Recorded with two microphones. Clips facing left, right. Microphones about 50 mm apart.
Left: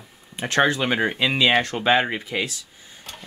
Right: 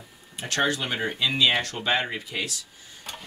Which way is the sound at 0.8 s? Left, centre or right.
Left.